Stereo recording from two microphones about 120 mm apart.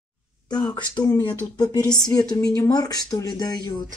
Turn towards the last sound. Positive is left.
turn(degrees=35)  # may be behind; listen again after turning